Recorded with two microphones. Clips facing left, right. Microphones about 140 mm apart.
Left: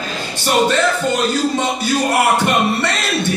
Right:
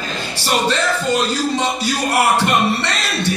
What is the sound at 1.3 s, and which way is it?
Beatboxing, 55° left (ahead or behind).